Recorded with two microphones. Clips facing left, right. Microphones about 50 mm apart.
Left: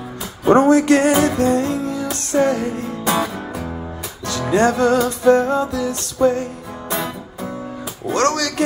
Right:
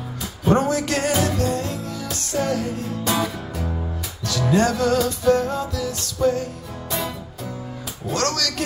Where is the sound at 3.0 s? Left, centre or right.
Centre.